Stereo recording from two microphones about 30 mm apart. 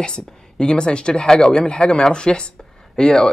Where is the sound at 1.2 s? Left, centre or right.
Left.